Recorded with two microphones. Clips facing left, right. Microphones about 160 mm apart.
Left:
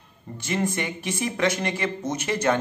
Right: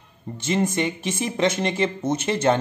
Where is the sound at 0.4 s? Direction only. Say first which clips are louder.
Right 4 dB; 25° right (ahead or behind).